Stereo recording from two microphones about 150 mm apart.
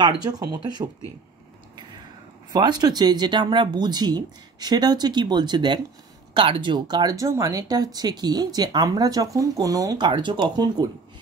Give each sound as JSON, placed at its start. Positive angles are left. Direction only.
{"t": 0.0, "sound": "speech", "side_deg": -30}
{"t": 2.5, "sound": "speech", "side_deg": -30}